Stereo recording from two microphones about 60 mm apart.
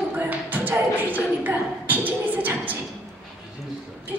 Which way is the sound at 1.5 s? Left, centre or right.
Right.